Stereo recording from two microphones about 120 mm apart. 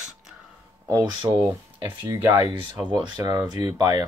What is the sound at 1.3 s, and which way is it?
Speech, 20° right (ahead or behind).